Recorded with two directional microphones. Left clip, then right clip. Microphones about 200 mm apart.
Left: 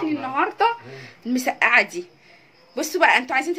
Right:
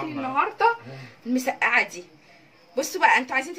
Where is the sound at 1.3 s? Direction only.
45° left (ahead or behind).